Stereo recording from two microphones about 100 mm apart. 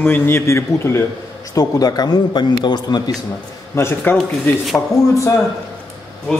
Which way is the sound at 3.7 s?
20° left (ahead or behind).